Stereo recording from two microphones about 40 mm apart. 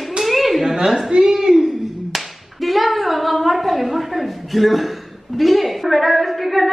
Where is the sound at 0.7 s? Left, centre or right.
Centre.